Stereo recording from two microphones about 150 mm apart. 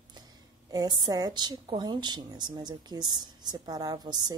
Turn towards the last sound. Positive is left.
turn(degrees=-25)  # may be behind; listen again after turning